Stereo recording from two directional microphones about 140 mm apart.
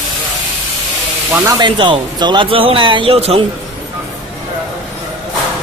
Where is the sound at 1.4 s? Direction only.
30° right (ahead or behind).